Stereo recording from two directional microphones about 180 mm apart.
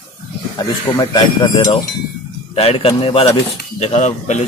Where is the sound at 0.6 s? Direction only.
20° left (ahead or behind).